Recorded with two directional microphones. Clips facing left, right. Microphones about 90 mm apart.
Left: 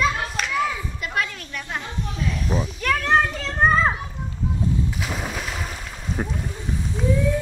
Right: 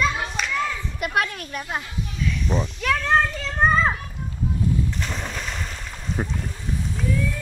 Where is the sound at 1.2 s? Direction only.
50° right (ahead or behind).